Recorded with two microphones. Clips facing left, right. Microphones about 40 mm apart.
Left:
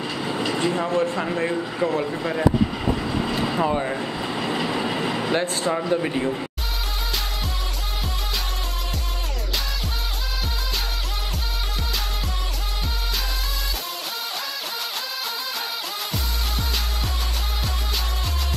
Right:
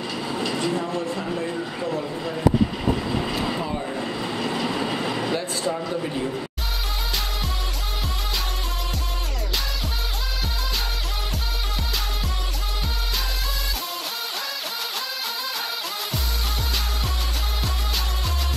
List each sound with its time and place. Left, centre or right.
0.3 s train: left
0.7 s speech: left
3.1 s vehicle: centre
3.5 s speech: left
4.0 s vehicle: centre
5.3 s speech: left
5.8 s a man's voice: left